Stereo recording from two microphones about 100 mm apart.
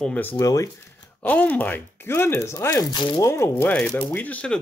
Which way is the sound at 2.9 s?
50° left (ahead or behind).